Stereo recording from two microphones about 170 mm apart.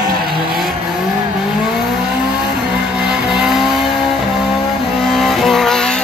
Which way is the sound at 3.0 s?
5° right (ahead or behind).